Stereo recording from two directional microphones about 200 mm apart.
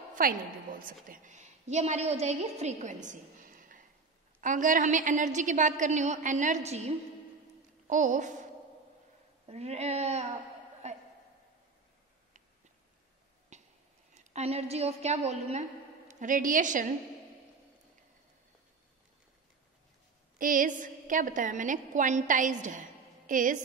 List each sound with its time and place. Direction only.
0.1 s a woman's voice: 45° right (ahead or behind)
7.9 s a woman's voice: 40° right (ahead or behind)
9.5 s a woman's voice: 30° right (ahead or behind)
10.8 s music: 35° right (ahead or behind)
13.5 s a sound: 35° right (ahead or behind)
14.1 s a woman's voice: 30° right (ahead or behind)
20.3 s a woman's voice: 45° right (ahead or behind)